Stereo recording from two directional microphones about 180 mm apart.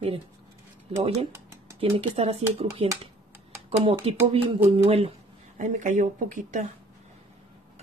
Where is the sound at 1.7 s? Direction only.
30° right (ahead or behind).